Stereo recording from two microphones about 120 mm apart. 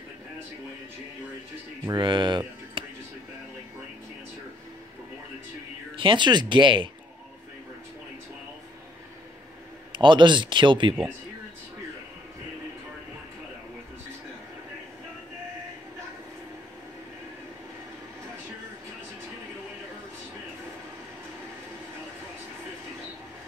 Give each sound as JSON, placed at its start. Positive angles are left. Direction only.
{"t": 2.0, "sound": "a sound", "side_deg": -40}
{"t": 5.9, "sound": "speech", "side_deg": -45}
{"t": 9.9, "sound": "speech", "side_deg": -40}